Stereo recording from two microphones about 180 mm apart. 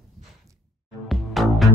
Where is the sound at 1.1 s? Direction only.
Centre (ahead or behind).